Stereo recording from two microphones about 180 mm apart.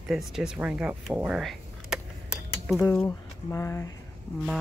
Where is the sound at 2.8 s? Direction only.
10° left (ahead or behind).